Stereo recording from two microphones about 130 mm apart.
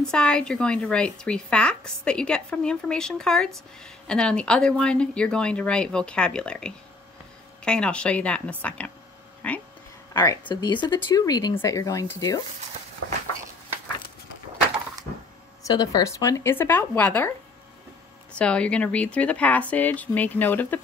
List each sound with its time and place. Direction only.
0.0 s a woman's voice: 5° left (ahead or behind)
10.5 s speech: 35° left (ahead or behind)
15.6 s speech: 30° left (ahead or behind); by 17.3 s 10° left (ahead or behind)
18.4 s a woman's voice: 10° left (ahead or behind)